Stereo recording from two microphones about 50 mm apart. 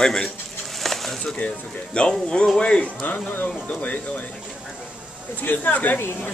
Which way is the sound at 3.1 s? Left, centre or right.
Left.